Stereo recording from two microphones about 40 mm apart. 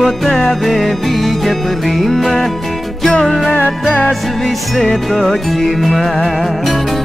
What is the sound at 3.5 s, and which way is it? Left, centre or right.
Music, left.